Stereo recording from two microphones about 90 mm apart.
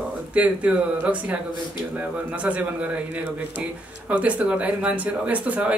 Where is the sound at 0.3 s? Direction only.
15° right (ahead or behind).